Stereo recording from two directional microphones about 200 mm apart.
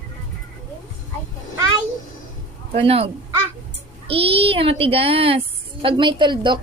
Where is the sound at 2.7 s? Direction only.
30° right (ahead or behind).